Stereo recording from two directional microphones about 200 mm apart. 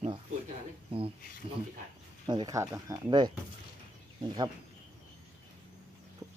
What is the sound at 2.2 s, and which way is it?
Speech, 20° right (ahead or behind).